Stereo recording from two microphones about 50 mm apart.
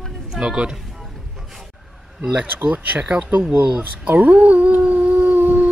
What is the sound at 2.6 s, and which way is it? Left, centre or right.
Speech, right.